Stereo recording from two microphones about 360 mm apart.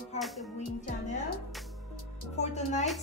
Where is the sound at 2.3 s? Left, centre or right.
Centre.